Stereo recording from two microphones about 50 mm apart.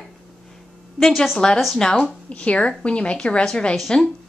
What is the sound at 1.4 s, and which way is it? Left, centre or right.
Speech, centre.